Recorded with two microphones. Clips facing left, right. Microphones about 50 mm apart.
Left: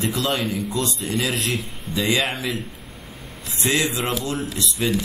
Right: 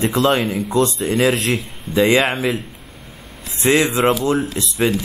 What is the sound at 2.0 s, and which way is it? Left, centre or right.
Speech, right.